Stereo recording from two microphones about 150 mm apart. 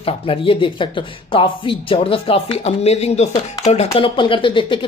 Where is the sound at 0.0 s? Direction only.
35° left (ahead or behind).